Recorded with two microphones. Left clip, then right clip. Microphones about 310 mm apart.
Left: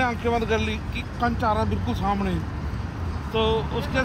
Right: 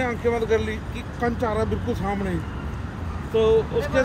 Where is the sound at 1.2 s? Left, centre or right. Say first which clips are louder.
Left 1 dB; centre.